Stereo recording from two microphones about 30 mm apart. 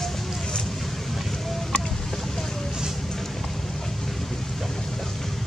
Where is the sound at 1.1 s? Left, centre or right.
Centre.